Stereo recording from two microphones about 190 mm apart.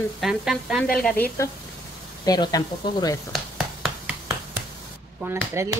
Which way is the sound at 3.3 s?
Centre (ahead or behind).